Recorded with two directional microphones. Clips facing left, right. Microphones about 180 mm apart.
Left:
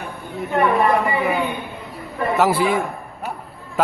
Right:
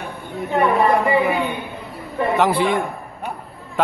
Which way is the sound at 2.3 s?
5° left (ahead or behind).